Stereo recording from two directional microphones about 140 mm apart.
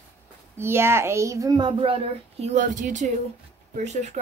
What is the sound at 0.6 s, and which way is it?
A child's voice, 15° right (ahead or behind).